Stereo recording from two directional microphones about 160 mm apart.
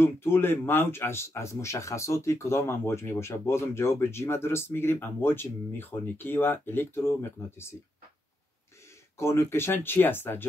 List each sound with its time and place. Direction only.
0.0 s speech: 15° left (ahead or behind)
9.2 s speech: 15° left (ahead or behind)